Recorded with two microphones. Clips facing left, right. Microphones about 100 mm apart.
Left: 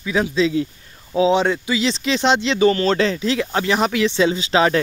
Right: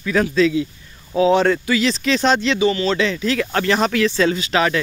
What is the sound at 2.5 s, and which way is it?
Speech, 45° left (ahead or behind).